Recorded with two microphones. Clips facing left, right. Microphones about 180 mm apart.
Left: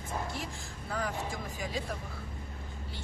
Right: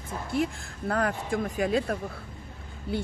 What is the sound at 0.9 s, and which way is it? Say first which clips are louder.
Speech: right 8 dB; 65° right (ahead or behind).